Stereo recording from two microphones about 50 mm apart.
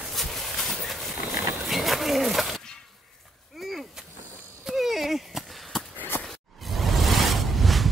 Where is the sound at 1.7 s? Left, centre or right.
Centre.